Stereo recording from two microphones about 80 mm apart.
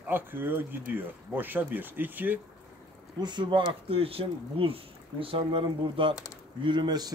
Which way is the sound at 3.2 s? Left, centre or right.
Right.